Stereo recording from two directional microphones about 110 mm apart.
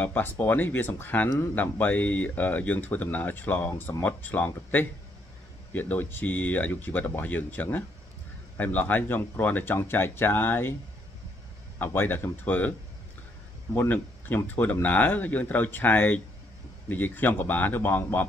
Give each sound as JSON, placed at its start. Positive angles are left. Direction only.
{"t": 0.0, "sound": "speech", "side_deg": 15}
{"t": 11.8, "sound": "speech", "side_deg": 20}
{"t": 13.7, "sound": "speech", "side_deg": 15}